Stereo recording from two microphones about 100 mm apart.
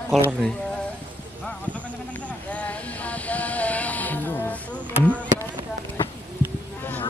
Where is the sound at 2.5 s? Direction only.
15° left (ahead or behind).